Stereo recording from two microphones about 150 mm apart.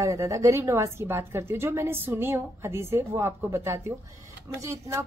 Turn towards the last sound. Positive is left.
turn(degrees=-20)  # may be behind; listen again after turning